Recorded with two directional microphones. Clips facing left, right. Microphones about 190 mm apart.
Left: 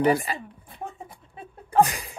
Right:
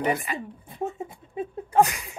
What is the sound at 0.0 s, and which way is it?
Speech, 35° left (ahead or behind).